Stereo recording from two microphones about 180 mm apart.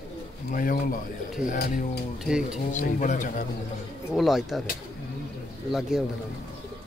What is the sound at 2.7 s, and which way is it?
Speech, 45° left (ahead or behind).